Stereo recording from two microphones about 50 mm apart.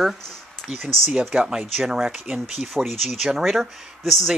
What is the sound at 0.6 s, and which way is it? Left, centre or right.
Speech, centre.